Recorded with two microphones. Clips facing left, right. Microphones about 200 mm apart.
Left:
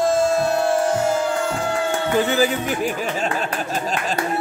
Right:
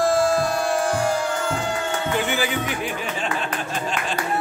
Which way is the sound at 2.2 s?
40° left (ahead or behind).